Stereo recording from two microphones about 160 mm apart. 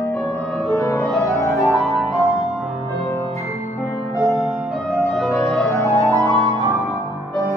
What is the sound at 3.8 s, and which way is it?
Music, 20° left (ahead or behind).